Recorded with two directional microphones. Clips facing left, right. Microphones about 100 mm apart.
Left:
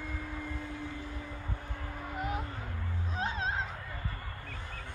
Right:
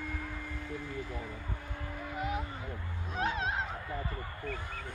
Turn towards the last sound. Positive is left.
turn(degrees=30)  # may be behind; listen again after turning